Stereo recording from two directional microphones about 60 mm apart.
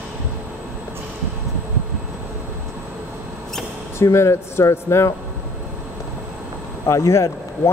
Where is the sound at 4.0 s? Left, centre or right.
Left.